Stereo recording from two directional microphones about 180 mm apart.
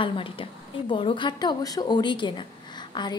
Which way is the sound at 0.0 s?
30° left (ahead or behind).